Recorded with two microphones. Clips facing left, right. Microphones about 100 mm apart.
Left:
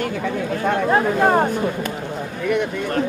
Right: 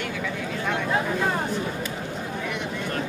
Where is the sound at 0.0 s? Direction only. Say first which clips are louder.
Left 7 dB; 45° left (ahead or behind).